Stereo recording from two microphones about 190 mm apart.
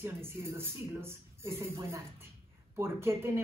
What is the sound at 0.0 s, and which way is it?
Speech, 10° right (ahead or behind).